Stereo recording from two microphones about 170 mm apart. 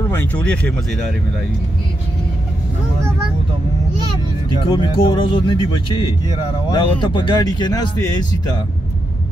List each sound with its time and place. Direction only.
0.1 s speech: 10° left (ahead or behind)
4.5 s speech: 30° left (ahead or behind)